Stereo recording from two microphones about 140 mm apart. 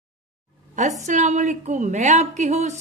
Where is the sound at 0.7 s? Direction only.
60° right (ahead or behind).